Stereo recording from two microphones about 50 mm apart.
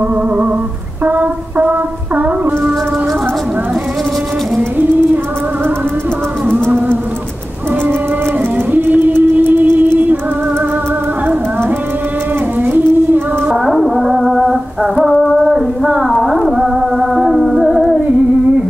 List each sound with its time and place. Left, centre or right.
1.0 s music: right
8.7 s music: right
13.7 s music: centre
15.0 s female singing: centre
15.9 s music: centre